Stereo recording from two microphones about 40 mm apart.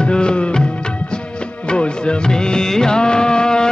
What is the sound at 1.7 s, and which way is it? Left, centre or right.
Music, left.